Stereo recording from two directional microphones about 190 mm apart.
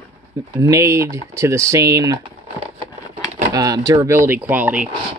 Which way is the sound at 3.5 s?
20° right (ahead or behind).